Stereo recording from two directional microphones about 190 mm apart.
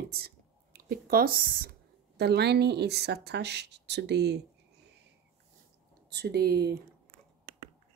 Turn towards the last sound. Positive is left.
turn(degrees=-60)  # may be behind; listen again after turning